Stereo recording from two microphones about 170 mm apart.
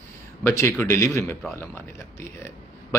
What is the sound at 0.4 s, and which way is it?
A man's voice, 15° left (ahead or behind).